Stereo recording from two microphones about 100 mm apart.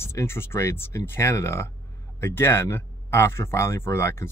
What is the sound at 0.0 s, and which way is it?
Speech, 25° left (ahead or behind).